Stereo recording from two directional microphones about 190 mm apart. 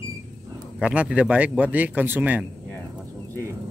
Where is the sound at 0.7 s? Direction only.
5° right (ahead or behind).